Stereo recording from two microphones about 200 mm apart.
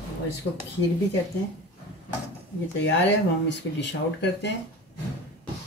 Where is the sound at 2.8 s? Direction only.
60° left (ahead or behind).